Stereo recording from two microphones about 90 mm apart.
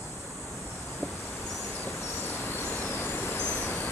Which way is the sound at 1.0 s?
30° left (ahead or behind).